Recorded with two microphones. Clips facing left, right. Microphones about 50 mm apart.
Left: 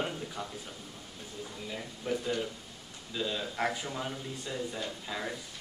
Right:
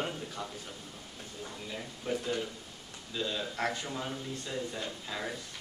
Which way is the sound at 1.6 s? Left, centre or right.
Centre.